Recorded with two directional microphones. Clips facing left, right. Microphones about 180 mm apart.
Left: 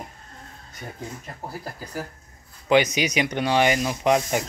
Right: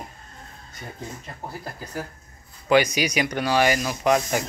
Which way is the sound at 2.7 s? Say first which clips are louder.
Even; 20° left (ahead or behind).